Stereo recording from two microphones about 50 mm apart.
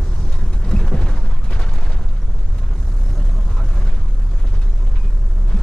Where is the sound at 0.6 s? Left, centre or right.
Centre.